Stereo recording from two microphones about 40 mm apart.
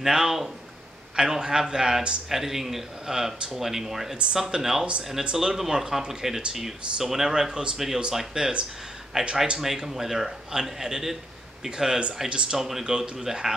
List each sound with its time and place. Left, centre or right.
0.0 s speech: centre
9.6 s speech: centre; by 12.4 s right
12.4 s speech: centre